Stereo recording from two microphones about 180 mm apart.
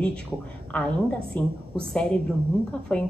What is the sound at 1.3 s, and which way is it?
A woman's voice, 5° left (ahead or behind).